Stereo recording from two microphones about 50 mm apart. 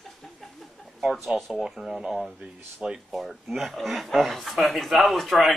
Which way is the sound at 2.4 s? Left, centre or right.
Centre.